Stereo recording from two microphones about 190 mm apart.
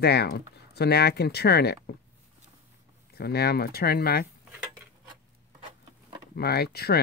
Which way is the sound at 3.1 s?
55° left (ahead or behind).